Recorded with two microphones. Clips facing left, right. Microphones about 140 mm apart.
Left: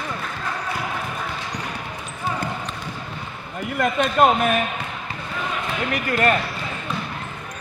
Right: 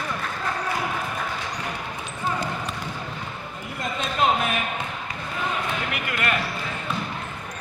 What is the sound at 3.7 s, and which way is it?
Speech, 60° left (ahead or behind).